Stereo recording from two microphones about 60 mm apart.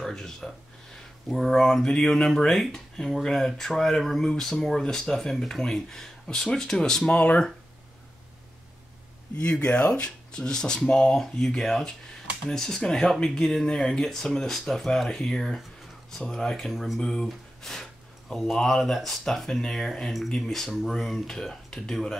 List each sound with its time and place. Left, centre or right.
0.0 s speech: centre
9.4 s speech: centre
17.0 s speech: centre